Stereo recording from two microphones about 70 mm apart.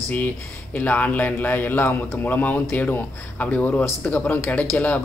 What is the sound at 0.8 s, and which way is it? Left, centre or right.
Speech, left.